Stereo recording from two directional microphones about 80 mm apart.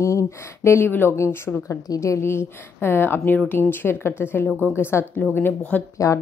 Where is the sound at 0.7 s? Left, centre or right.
Left.